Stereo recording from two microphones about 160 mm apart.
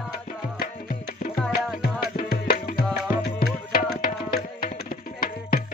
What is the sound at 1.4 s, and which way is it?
Music, centre (ahead or behind).